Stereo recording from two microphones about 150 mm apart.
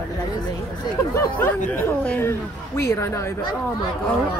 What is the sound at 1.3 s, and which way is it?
Speech, 10° left (ahead or behind).